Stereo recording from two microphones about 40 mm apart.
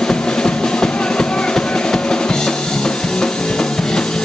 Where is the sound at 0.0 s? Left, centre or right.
Left.